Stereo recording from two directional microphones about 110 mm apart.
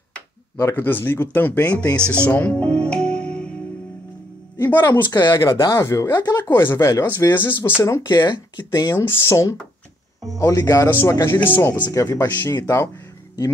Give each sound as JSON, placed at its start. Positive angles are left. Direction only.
{"t": 0.6, "sound": "speech", "side_deg": 25}
{"t": 2.0, "sound": "music", "side_deg": 10}
{"t": 4.6, "sound": "music", "side_deg": 20}
{"t": 5.1, "sound": "speech", "side_deg": 30}
{"t": 6.5, "sound": "speech", "side_deg": 25}
{"t": 7.8, "sound": "speech", "side_deg": 30}
{"t": 8.2, "sound": "speech", "side_deg": 40}
{"t": 9.0, "sound": "speech", "side_deg": 25}
{"t": 11.9, "sound": "speech", "side_deg": 30}
{"t": 12.3, "sound": "speech", "side_deg": 20}
{"t": 12.5, "sound": "speech", "side_deg": 30}